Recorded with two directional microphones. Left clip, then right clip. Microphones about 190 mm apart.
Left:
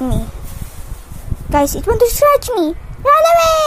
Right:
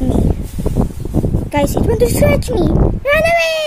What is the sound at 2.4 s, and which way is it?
Speech, 15° left (ahead or behind).